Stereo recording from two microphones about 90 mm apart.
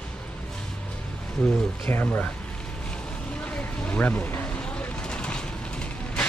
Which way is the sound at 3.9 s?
15° left (ahead or behind).